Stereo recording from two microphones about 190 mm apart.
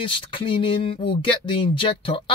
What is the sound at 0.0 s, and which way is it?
Speech, 25° left (ahead or behind).